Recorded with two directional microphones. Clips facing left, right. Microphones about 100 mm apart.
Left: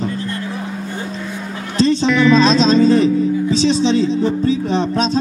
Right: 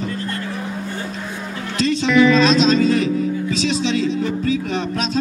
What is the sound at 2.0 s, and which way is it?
Speech, centre (ahead or behind).